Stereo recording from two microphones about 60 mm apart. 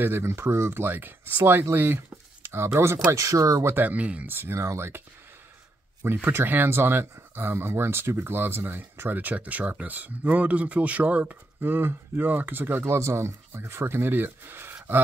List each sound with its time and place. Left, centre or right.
0.0 s speech: right
0.8 s speech: right
3.6 s speech: right
3.9 s speech: right
4.3 s speech: right
4.6 s speech: right
6.0 s speech: right
11.7 s speech: right